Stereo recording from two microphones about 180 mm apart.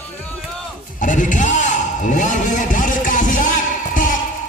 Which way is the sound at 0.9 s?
45° left (ahead or behind).